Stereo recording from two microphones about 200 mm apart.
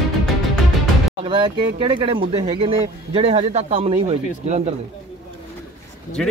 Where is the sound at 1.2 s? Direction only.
25° right (ahead or behind).